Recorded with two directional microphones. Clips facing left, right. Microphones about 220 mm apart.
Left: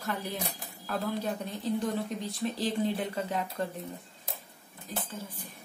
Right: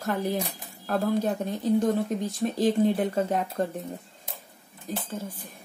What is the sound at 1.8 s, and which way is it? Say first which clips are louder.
Speech: right 7 dB; 45° right (ahead or behind).